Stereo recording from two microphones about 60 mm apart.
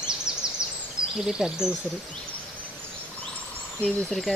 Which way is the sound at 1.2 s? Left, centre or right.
Centre.